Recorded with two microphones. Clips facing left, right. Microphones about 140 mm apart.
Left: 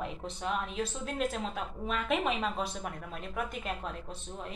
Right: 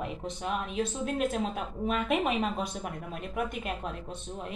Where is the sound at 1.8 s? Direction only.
45° right (ahead or behind).